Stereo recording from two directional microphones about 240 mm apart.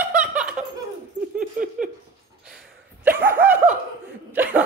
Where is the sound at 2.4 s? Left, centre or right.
Centre.